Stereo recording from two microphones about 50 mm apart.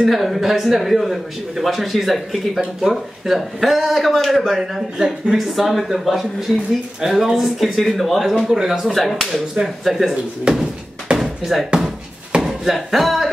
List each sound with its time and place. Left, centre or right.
0.0 s a man's voice: centre
10.5 s speech: centre
11.1 s a sound: centre
12.4 s speech: centre